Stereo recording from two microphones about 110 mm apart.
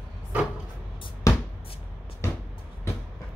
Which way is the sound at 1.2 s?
25° left (ahead or behind).